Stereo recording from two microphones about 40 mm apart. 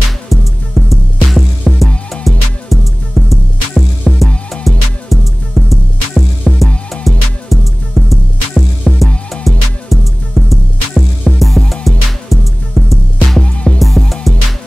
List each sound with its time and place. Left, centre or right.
0.3 s music: centre
13.4 s music: left
13.7 s music: centre